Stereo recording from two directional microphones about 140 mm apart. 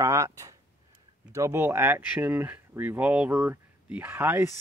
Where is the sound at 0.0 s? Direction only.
20° right (ahead or behind).